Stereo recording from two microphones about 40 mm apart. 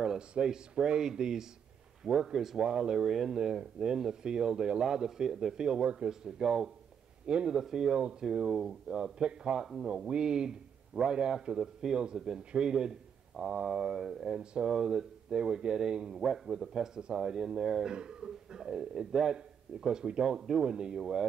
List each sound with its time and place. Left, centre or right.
0.3 s speech: centre
3.0 s speech: centre
3.3 s speech: centre
7.2 s a sound: right
7.5 s speech: centre
8.0 s a sound: right
8.3 s speech: centre
13.4 s a sound: right
14.0 s speech: centre
14.4 s a sound: right
14.7 s speech: centre
16.2 s speech: centre